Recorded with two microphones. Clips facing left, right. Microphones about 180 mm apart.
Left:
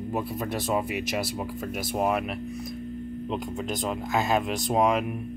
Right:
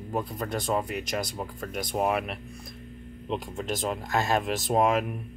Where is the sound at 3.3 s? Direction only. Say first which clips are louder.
Right 1 dB; centre (ahead or behind).